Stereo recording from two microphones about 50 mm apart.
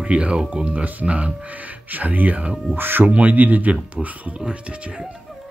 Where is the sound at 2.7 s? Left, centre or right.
Right.